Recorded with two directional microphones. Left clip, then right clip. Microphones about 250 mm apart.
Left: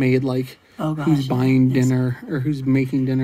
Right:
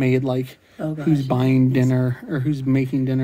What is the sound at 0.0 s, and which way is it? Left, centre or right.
Speech, centre.